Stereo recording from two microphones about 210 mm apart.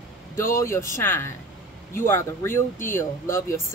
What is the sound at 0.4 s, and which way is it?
Speech, 15° left (ahead or behind).